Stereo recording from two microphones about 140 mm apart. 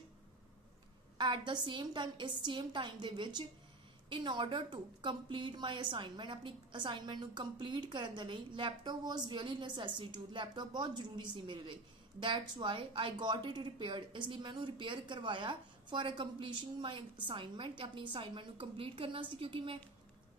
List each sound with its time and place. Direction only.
1.1 s a woman's voice: 35° right (ahead or behind)